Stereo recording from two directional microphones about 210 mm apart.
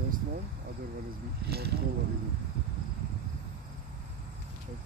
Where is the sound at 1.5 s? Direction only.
50° right (ahead or behind).